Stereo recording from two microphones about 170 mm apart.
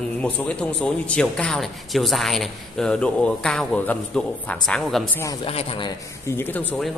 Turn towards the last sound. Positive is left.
turn(degrees=10)  # may be behind; listen again after turning